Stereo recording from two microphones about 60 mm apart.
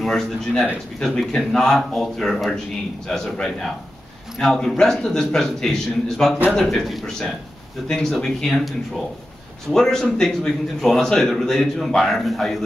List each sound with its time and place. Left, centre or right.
0.0 s a man's voice: centre